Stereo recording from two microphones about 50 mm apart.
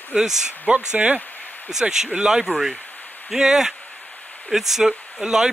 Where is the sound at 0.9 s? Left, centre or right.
Right.